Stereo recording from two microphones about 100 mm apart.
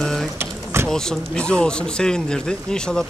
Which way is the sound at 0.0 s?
5° left (ahead or behind).